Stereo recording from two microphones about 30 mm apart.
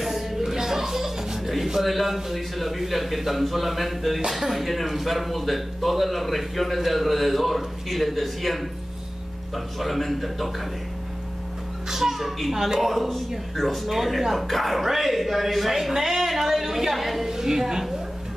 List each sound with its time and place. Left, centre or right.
0.4 s music: centre
1.8 s a man's voice: centre
9.8 s a man's voice: centre
11.9 s a woman's voice: centre
12.8 s a man's voice: centre
17.3 s a woman's voice: centre